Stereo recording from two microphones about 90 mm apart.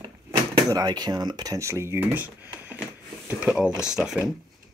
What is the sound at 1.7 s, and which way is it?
Speech, 30° right (ahead or behind).